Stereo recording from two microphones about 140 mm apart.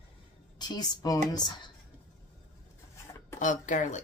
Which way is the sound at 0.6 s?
30° left (ahead or behind).